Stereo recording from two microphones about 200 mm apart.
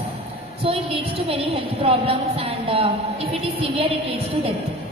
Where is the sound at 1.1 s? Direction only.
30° right (ahead or behind).